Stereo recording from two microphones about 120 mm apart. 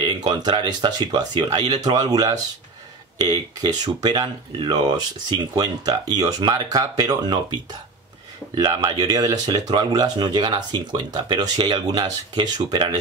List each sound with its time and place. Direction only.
0.0 s speech: 35° right (ahead or behind)
8.5 s speech: 35° right (ahead or behind)